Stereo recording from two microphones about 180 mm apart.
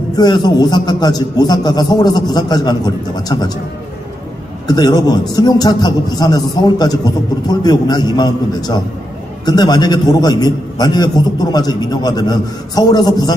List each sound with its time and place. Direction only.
0.1 s a man's voice: 25° left (ahead or behind)
4.6 s a man's voice: 25° left (ahead or behind)